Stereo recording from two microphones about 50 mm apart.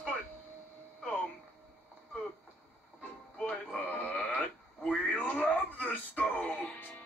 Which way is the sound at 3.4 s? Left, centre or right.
Left.